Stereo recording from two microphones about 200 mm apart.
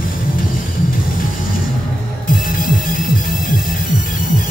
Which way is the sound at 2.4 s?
45° left (ahead or behind).